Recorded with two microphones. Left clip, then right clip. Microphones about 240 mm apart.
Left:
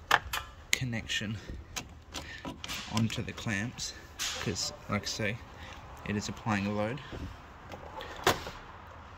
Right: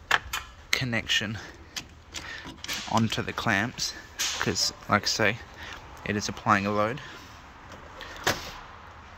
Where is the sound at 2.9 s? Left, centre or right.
Centre.